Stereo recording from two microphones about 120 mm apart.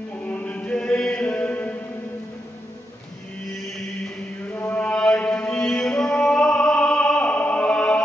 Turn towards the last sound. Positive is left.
turn(degrees=10)  # may be behind; listen again after turning